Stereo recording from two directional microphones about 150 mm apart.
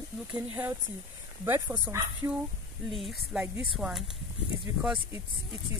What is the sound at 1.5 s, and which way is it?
Speech, 15° right (ahead or behind).